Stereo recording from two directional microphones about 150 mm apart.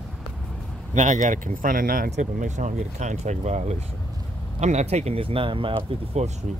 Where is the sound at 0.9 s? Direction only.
55° right (ahead or behind); by 2.1 s 70° right (ahead or behind).